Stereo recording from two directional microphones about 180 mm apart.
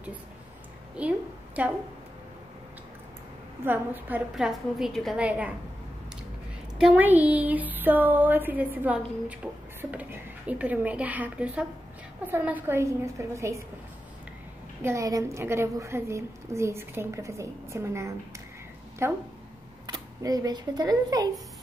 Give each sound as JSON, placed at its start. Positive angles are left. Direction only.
{"t": 0.9, "sound": "a woman's voice", "side_deg": -10}
{"t": 3.6, "sound": "a woman's voice", "side_deg": -10}
{"t": 6.8, "sound": "a woman's voice", "side_deg": -10}
{"t": 14.8, "sound": "a woman's voice", "side_deg": -15}